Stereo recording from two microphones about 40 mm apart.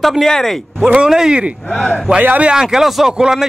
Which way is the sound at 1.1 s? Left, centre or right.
Centre.